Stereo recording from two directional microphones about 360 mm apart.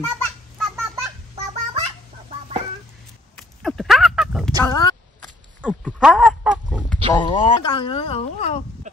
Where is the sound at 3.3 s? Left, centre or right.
Centre.